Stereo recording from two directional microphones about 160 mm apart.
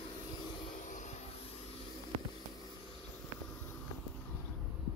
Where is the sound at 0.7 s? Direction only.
50° left (ahead or behind).